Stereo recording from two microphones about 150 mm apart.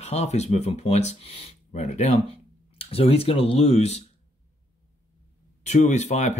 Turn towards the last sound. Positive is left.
turn(degrees=50)  # may be behind; listen again after turning